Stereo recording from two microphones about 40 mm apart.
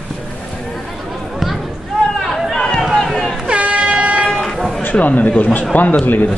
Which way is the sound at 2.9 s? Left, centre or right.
Centre.